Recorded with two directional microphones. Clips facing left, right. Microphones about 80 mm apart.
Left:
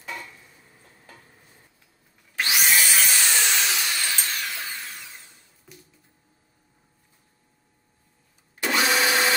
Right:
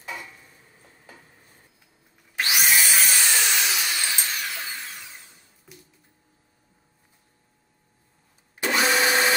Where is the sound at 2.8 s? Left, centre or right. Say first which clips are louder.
Even; centre.